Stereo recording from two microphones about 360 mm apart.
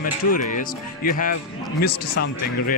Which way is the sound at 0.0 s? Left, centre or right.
Left.